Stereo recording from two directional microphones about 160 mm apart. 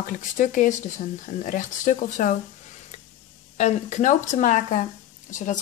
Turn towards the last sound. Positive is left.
turn(degrees=50)  # may be behind; listen again after turning